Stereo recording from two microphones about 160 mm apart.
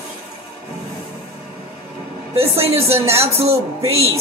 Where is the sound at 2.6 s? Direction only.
40° right (ahead or behind).